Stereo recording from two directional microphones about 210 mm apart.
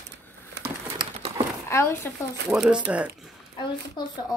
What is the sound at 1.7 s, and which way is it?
Speech, 15° left (ahead or behind).